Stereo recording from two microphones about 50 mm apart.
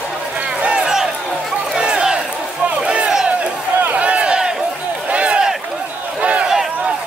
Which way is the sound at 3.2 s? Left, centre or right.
Right.